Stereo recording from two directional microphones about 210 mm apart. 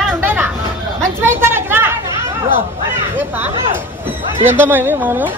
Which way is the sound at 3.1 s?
10° right (ahead or behind).